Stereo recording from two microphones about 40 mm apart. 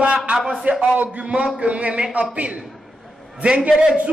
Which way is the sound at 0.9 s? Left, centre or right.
Right.